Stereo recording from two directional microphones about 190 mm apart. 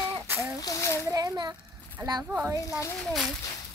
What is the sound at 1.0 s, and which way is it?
A child's voice, 20° right (ahead or behind).